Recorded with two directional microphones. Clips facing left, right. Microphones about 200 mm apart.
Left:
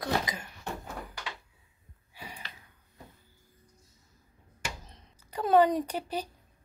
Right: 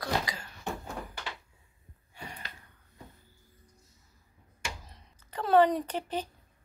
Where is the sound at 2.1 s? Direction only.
5° left (ahead or behind).